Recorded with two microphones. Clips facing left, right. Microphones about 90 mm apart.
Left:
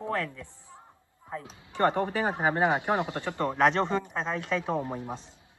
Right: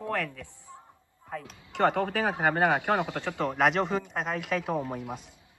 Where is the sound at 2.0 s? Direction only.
20° left (ahead or behind).